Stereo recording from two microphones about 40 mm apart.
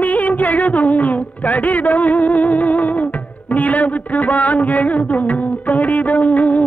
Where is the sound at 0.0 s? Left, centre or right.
Left.